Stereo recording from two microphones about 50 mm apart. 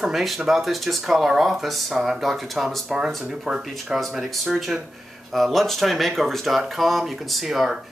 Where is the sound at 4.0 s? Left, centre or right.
Centre.